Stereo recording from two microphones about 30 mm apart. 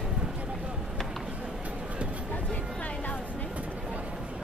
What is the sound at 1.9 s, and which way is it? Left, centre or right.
Vehicle, right.